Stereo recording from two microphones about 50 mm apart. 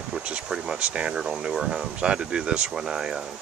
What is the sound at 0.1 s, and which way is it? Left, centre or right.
Speech, right.